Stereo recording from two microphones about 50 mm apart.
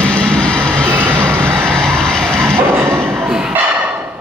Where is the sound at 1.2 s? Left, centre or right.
Centre.